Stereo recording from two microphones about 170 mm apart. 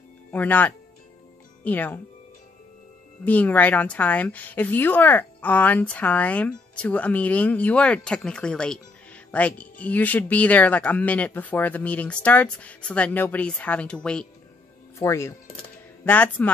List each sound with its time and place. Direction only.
0.3 s a woman's voice: 10° left (ahead or behind)
3.3 s a woman's voice: 10° left (ahead or behind)
15.0 s a woman's voice: 15° left (ahead or behind)